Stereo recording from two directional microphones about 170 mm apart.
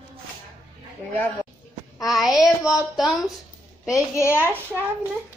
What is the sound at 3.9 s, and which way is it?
Speech, 15° left (ahead or behind).